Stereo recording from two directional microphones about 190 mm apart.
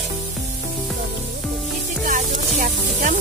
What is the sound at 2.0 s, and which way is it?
Music, 45° right (ahead or behind).